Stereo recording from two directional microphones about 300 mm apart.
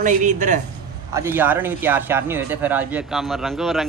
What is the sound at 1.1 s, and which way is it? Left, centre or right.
A man's voice, centre.